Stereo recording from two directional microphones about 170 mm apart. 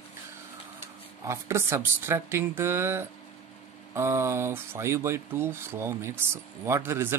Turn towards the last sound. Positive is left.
turn(degrees=-15)  # may be behind; listen again after turning